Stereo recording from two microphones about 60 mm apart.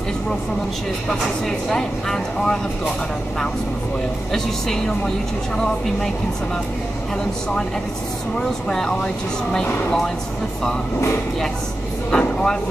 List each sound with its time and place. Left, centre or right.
1.7 s speech: centre
4.3 s speech: centre
8.4 s speech: centre
12.1 s vehicle: centre